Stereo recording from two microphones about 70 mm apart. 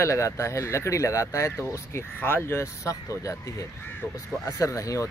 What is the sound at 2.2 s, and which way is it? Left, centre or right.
Speech, left.